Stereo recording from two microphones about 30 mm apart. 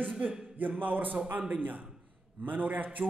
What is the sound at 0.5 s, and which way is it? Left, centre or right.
A man's voice, right.